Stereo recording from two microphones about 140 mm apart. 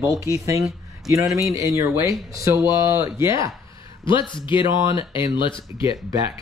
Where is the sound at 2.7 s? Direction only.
30° left (ahead or behind).